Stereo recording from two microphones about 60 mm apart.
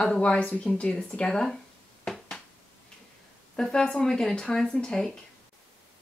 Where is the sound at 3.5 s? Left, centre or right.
Centre.